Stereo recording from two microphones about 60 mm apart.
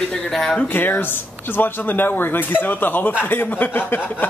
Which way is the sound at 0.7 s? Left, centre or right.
Left.